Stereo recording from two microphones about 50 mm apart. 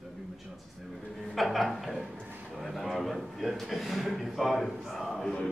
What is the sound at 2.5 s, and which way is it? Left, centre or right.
A man's voice, centre.